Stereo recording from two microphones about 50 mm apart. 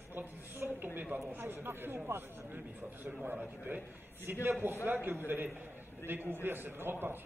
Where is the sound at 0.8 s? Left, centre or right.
Right.